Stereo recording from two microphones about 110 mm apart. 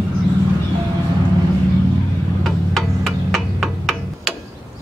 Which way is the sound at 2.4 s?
Centre (ahead or behind).